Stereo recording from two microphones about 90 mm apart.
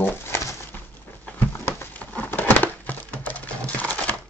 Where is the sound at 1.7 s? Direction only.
20° left (ahead or behind).